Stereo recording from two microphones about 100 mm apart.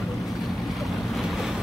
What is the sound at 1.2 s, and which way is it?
Waves, centre (ahead or behind).